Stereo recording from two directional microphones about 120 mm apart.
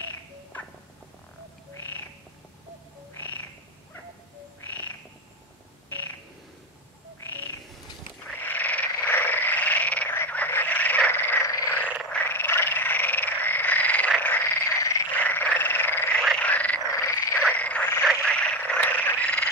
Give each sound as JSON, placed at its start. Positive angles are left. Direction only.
{"t": 0.0, "sound": "cat", "side_deg": 15}
{"t": 1.8, "sound": "frog", "side_deg": 15}
{"t": 3.2, "sound": "frog", "side_deg": 15}
{"t": 7.2, "sound": "frog", "side_deg": 15}
{"t": 16.9, "sound": "frog", "side_deg": 25}
{"t": 17.5, "sound": "frog", "side_deg": 10}